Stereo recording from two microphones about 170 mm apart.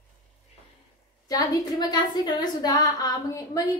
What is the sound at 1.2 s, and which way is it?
A woman's voice, 20° left (ahead or behind).